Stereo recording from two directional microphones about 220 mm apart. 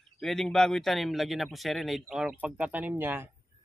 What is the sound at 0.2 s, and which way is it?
Speech, centre (ahead or behind).